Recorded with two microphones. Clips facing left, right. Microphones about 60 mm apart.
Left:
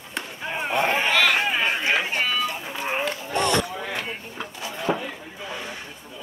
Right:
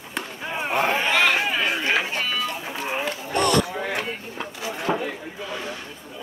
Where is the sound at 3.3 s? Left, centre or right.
Left.